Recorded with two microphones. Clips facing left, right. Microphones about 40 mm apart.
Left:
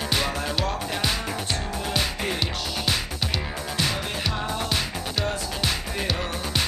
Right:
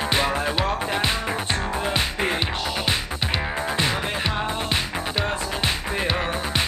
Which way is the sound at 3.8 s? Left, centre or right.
Right.